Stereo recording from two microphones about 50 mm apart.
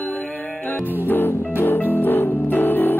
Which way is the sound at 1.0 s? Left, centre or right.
Left.